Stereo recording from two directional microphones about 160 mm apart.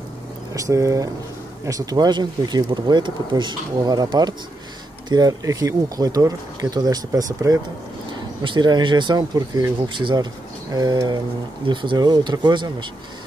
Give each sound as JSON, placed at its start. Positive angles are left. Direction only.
{"t": 0.6, "sound": "speech", "side_deg": -20}